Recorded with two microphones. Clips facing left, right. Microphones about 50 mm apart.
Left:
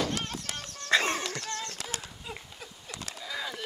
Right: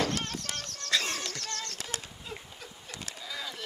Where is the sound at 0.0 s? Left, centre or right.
Centre.